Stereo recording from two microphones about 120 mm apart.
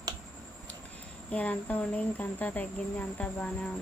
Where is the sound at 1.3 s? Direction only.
10° left (ahead or behind).